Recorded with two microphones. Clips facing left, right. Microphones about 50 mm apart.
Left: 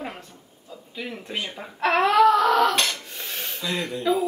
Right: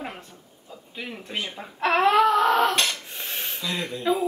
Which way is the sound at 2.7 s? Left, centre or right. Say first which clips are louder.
Even; centre.